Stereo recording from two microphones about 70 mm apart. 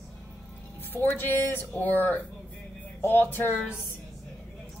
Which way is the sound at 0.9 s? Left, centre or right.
Left.